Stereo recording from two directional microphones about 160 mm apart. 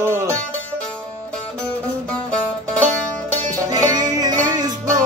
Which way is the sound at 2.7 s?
10° left (ahead or behind).